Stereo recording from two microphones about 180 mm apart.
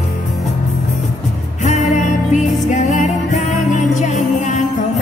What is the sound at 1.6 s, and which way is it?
Music, 40° left (ahead or behind).